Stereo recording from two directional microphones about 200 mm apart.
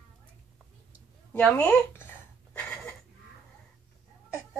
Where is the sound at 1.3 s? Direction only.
5° left (ahead or behind).